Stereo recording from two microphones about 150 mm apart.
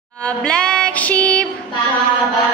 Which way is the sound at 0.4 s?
5° left (ahead or behind).